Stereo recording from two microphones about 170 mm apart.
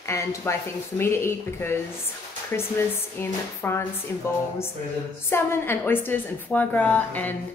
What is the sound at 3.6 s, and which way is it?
Speech, 15° left (ahead or behind).